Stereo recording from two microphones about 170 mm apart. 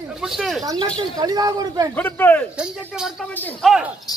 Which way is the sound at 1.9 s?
10° left (ahead or behind).